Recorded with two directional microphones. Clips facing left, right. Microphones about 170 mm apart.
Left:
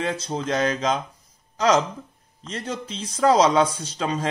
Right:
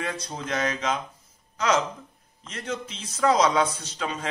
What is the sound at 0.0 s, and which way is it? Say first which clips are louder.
Speech: left 6 dB; 25° left (ahead or behind).